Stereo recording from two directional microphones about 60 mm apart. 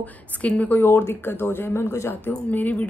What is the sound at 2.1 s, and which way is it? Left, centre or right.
Speech, left.